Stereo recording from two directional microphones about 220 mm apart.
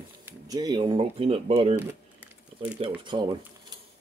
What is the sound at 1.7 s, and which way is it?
Typing, 10° right (ahead or behind).